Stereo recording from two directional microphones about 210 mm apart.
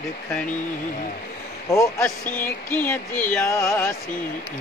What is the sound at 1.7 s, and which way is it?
Speech, 10° left (ahead or behind).